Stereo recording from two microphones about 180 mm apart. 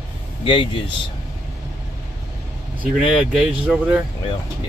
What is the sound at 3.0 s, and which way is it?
Speech, 5° right (ahead or behind).